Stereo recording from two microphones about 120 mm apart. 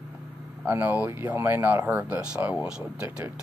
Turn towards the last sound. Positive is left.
turn(degrees=-10)  # may be behind; listen again after turning